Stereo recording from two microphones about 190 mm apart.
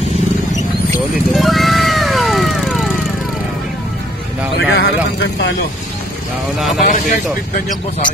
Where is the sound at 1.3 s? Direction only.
Centre (ahead or behind).